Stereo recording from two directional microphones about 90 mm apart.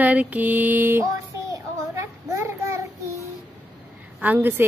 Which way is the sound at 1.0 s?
35° right (ahead or behind).